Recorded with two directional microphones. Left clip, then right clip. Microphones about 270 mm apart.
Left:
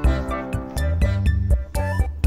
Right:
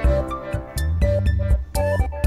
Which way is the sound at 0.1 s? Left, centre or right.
Centre.